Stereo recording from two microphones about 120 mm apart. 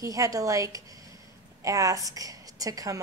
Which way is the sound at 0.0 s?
30° right (ahead or behind).